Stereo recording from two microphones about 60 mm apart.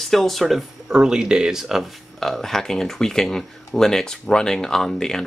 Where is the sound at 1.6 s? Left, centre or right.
Centre.